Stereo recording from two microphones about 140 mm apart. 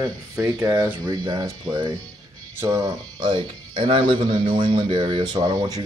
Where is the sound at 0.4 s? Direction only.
20° right (ahead or behind).